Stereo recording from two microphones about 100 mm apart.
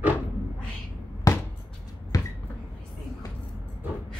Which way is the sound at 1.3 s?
35° left (ahead or behind).